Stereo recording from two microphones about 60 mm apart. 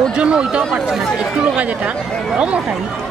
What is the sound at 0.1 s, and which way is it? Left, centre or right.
Speech, centre.